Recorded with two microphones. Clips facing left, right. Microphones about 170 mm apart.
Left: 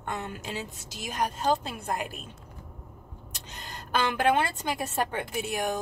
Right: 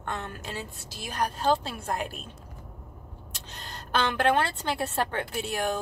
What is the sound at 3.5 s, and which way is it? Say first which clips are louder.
A woman's voice: right 1 dB; 10° left (ahead or behind).